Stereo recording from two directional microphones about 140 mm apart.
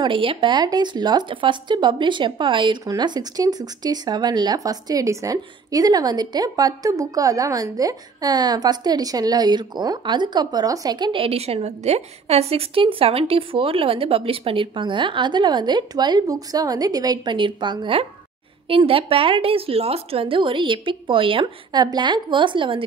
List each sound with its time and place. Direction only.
0.0 s speech: 40° right (ahead or behind)